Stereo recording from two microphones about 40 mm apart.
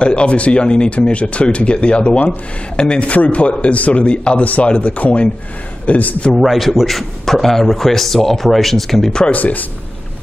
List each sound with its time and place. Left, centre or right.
0.0 s speech: left
6.3 s a man's voice: centre
9.3 s speech: left